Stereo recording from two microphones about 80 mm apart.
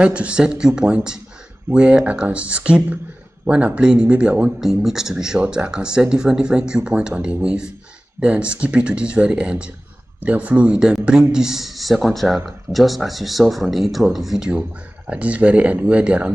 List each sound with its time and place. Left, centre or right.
0.0 s speech: centre
15.0 s speech: centre